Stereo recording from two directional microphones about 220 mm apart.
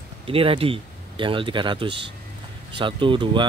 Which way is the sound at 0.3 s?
25° right (ahead or behind).